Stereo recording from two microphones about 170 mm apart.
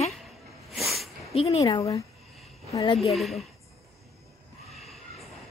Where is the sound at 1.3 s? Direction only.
35° left (ahead or behind).